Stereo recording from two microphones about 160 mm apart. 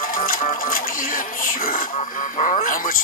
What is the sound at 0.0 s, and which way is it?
Music, 65° left (ahead or behind).